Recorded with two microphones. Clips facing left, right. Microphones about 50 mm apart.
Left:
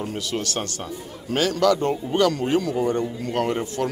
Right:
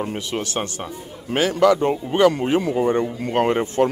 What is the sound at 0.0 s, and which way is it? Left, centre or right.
A man's voice, right.